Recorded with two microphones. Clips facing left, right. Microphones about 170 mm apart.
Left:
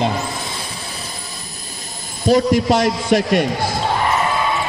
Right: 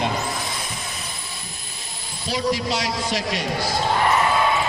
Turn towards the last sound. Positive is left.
turn(degrees=55)  # may be behind; listen again after turning